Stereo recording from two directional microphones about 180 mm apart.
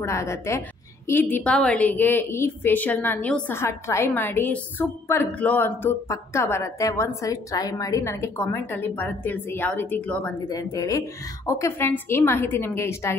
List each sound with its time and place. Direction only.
0.0 s a woman's voice: 15° left (ahead or behind)
10.5 s a woman's voice: 20° left (ahead or behind)